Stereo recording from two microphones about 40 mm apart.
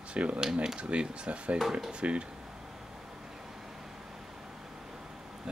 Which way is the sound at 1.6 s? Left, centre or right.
Centre.